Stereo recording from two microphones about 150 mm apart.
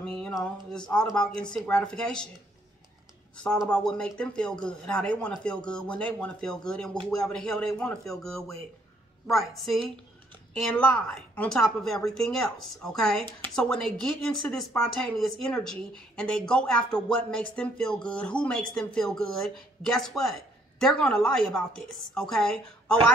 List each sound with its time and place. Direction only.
0.0 s a woman's voice: 5° left (ahead or behind)
3.4 s a woman's voice: 5° left (ahead or behind)